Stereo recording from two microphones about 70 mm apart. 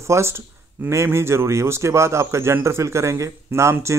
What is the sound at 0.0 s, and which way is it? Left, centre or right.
Speech, right.